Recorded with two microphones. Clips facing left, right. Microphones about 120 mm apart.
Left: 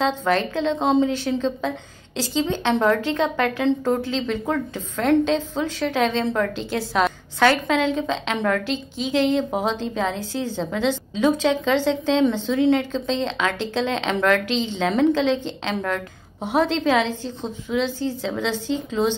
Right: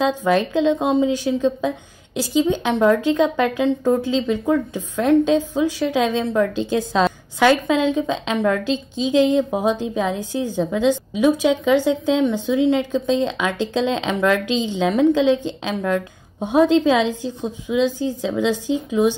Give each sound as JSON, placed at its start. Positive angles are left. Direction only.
{"t": 0.0, "sound": "a woman's voice", "side_deg": -15}